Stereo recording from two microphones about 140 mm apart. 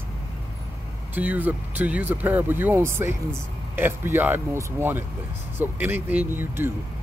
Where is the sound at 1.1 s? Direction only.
10° right (ahead or behind).